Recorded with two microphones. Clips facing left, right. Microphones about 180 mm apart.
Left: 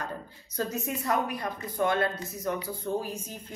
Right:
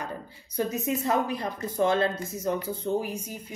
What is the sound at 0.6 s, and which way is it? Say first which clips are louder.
Speech: right 4 dB; 15° right (ahead or behind).